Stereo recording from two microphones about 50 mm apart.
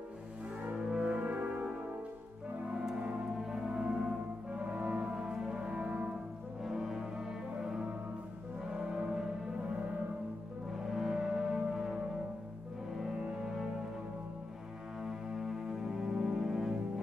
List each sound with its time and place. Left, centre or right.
0.7 s music: right
3.0 s music: centre
4.6 s music: right
5.9 s brass instrument: right
6.6 s music: centre
10.7 s music: centre
13.2 s cello: centre
15.0 s music: centre